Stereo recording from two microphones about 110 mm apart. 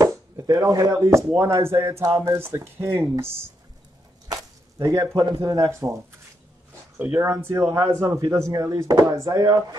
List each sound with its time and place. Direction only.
0.0 s speech: 35° right (ahead or behind)
4.3 s a sound: 35° right (ahead or behind)
5.3 s speech: 30° right (ahead or behind)
7.0 s speech: 20° right (ahead or behind)